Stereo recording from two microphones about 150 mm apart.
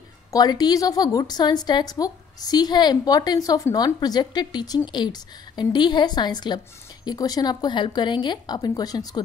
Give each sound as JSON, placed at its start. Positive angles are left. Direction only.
{"t": 0.3, "sound": "a woman's voice", "side_deg": 25}